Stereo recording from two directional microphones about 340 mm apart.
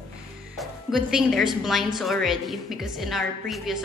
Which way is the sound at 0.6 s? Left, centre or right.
Centre.